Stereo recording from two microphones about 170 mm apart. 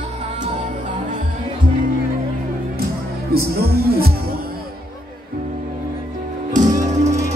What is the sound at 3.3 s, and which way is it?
Music, 65° right (ahead or behind).